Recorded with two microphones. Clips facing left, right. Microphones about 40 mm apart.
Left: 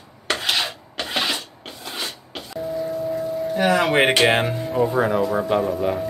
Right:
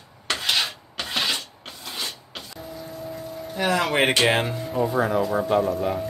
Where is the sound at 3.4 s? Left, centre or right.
Centre.